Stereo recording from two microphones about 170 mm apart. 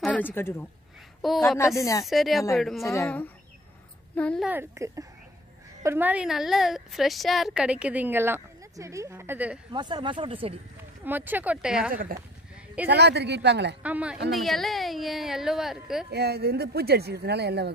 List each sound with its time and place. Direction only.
0.0 s a woman's voice: 10° left (ahead or behind)
1.2 s speech: centre (ahead or behind)
1.8 s speech: 20° left (ahead or behind)
2.0 s speech: centre (ahead or behind)
2.8 s speech: 15° left (ahead or behind)
4.1 s a woman's voice: 5° left (ahead or behind)
4.5 s a woman's voice: 15° right (ahead or behind)
9.7 s speech: 25° right (ahead or behind)
11.1 s a woman's voice: 10° right (ahead or behind)
11.9 s speech: 55° right (ahead or behind)
12.8 s speech: 80° right
13.8 s a woman's voice: 10° right (ahead or behind)
16.1 s speech: 70° right (ahead or behind)